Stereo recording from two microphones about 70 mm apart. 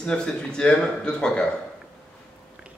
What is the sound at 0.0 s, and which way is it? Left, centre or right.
A man's voice, centre.